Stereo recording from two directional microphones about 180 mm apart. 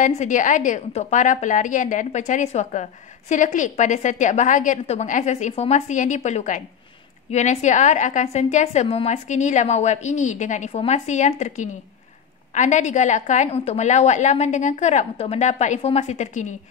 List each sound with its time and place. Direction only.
0.0 s a woman's voice: 45° left (ahead or behind)